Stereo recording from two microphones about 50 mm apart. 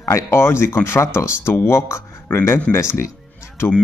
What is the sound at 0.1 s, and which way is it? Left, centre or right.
Speech, left.